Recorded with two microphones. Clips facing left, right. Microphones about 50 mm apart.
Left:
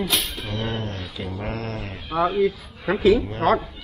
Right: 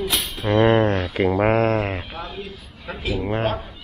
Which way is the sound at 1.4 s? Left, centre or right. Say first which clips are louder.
Right 11 dB; right.